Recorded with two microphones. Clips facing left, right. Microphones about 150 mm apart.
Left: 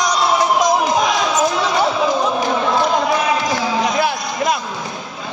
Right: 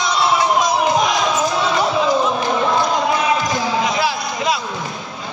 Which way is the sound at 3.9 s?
50° left (ahead or behind).